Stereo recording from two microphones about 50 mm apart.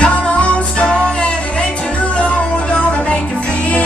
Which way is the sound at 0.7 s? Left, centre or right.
Left.